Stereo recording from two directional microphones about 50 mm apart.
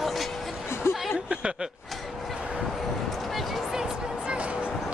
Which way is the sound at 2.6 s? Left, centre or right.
Centre.